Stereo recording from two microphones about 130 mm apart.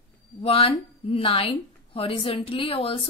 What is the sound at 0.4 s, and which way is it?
A woman's voice, 45° left (ahead or behind).